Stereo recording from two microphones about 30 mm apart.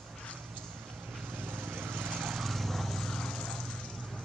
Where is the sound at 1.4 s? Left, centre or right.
Right.